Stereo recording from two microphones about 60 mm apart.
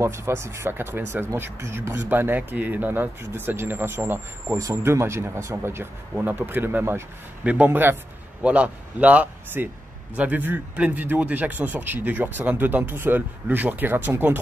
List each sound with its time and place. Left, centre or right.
0.0 s speech: right
4.8 s speech: right
6.2 s speech: right
7.4 s a man's voice: right
8.4 s a man's voice: centre